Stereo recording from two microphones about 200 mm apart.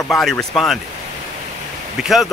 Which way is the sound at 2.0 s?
Centre (ahead or behind).